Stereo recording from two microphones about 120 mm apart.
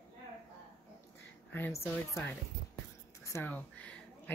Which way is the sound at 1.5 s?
20° left (ahead or behind).